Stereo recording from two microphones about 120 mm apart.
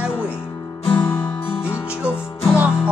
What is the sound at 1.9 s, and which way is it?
Music, 10° right (ahead or behind).